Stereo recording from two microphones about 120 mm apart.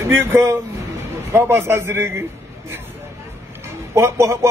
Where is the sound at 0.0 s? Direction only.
20° right (ahead or behind).